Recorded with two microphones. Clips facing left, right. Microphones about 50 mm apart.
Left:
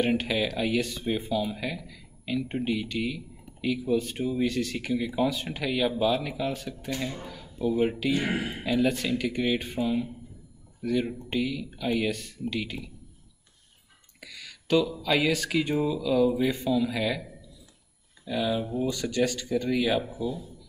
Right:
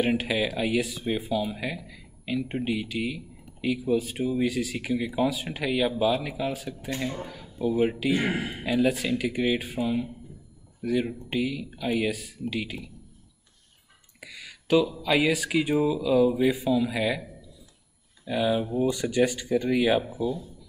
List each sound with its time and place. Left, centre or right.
0.0 s speech: centre
14.2 s speech: centre
20.1 s speech: centre